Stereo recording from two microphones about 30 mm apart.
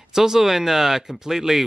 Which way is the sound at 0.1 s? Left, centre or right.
Centre.